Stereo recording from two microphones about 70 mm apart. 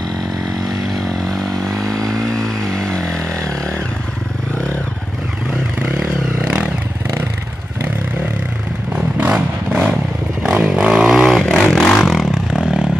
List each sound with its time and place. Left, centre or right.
1.8 s vehicle: right
2.1 s vehicle: centre
5.8 s vehicle: centre
9.7 s vehicle: centre
10.4 s music: centre
12.0 s a sound: centre